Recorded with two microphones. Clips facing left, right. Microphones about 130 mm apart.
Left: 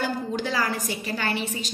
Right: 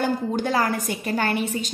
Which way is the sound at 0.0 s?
50° right (ahead or behind).